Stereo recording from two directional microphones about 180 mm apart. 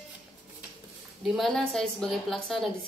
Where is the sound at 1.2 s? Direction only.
Centre (ahead or behind).